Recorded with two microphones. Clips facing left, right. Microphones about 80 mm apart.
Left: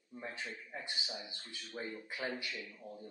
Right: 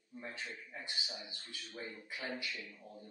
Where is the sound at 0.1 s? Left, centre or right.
Left.